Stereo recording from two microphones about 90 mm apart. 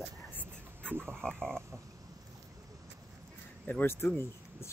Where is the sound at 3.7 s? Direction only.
25° left (ahead or behind).